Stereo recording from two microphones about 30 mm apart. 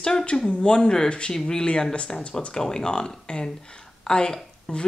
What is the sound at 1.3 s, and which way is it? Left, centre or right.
Speech, left.